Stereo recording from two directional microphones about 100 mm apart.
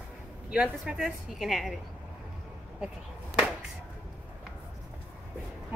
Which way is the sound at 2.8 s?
15° right (ahead or behind).